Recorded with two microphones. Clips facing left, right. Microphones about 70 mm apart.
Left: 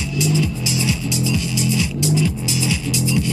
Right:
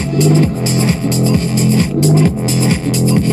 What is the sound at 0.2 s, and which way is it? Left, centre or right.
Music, right.